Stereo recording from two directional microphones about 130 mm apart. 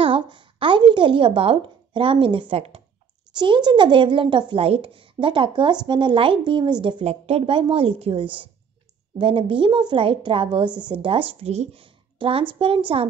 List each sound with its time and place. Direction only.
0.0 s a woman's voice: 40° right (ahead or behind)
3.3 s speech: 35° right (ahead or behind)